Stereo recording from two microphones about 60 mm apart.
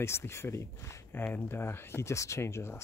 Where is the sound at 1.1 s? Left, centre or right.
Left.